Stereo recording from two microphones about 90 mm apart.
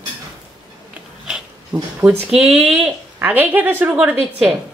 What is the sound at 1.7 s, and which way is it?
Speech, 35° right (ahead or behind).